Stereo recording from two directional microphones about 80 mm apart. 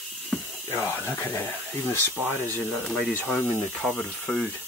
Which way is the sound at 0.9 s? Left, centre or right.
Left.